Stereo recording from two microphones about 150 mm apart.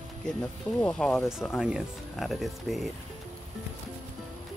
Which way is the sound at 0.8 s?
5° left (ahead or behind).